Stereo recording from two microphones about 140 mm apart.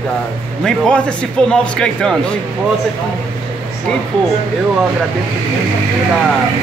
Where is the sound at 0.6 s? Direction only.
5° left (ahead or behind).